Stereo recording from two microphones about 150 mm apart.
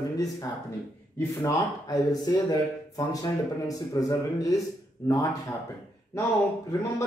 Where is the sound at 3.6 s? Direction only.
25° left (ahead or behind).